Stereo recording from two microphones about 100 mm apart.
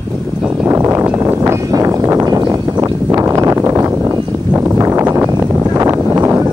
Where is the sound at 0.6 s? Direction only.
25° right (ahead or behind).